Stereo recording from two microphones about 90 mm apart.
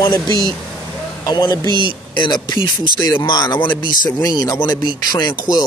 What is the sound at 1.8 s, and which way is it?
Speech, 60° left (ahead or behind).